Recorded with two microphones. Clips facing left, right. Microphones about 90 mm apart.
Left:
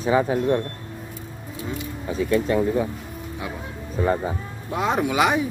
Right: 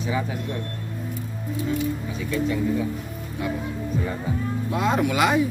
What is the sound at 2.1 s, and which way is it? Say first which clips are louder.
Speech: left 9 dB; 40° left (ahead or behind).